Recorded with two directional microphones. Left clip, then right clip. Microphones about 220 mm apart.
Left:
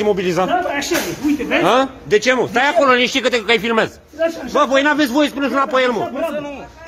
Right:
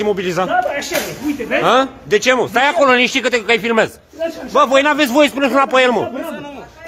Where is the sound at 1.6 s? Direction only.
15° right (ahead or behind).